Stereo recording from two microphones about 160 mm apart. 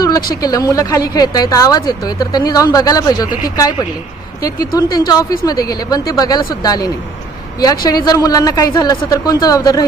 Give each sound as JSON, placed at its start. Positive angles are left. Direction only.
{"t": 0.4, "sound": "a woman's voice", "side_deg": 20}